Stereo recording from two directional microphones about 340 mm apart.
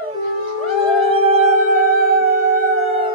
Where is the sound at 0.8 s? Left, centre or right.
Centre.